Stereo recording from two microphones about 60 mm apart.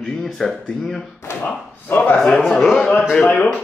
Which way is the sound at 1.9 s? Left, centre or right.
Left.